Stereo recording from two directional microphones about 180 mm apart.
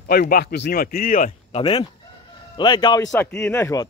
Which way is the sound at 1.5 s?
30° left (ahead or behind).